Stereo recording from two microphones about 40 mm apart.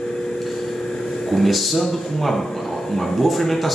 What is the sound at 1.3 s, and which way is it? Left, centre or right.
Speech, centre.